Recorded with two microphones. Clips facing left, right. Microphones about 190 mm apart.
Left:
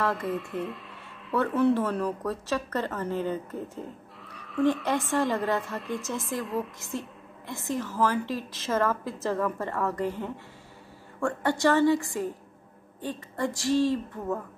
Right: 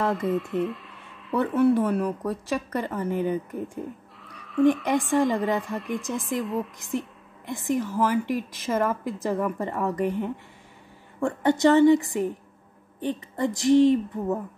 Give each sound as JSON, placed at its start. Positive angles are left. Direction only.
{"t": 0.1, "sound": "speech", "side_deg": 0}
{"t": 1.4, "sound": "a woman's voice", "side_deg": -10}
{"t": 4.3, "sound": "a sound", "side_deg": 0}
{"t": 4.8, "sound": "a woman's voice", "side_deg": -15}
{"t": 5.8, "sound": "a woman's voice", "side_deg": 0}
{"t": 6.8, "sound": "a woman's voice", "side_deg": -15}